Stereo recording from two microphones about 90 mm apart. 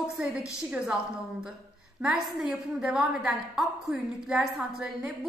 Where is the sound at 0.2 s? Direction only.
10° right (ahead or behind).